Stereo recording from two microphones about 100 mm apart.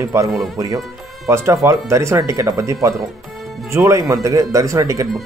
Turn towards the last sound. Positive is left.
turn(degrees=-35)  # may be behind; listen again after turning